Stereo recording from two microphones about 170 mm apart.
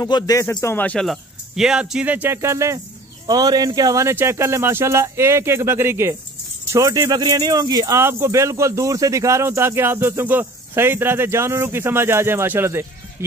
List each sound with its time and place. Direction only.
0.0 s speech: 20° left (ahead or behind); by 12.8 s 15° right (ahead or behind)